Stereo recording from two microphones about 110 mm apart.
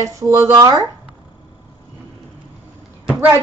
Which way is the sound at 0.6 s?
35° right (ahead or behind).